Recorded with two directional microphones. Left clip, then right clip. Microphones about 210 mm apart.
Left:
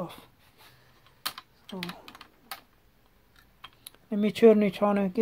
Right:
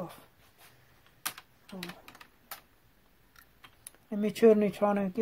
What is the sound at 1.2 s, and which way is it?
Typing, 15° left (ahead or behind).